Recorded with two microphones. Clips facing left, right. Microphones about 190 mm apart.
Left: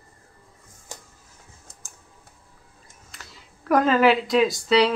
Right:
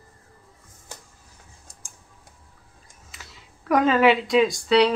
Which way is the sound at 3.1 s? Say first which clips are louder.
Even; centre (ahead or behind).